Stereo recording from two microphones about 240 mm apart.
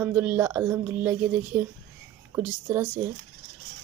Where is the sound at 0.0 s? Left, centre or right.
Centre.